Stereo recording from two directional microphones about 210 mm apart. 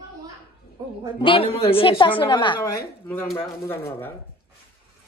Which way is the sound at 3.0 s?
10° left (ahead or behind).